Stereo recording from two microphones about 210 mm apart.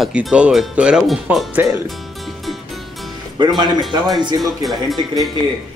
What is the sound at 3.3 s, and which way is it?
Speech, 20° right (ahead or behind).